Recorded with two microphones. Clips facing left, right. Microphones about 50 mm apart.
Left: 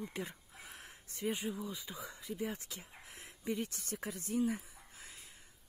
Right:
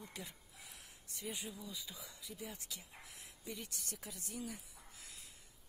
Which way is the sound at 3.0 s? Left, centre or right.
Left.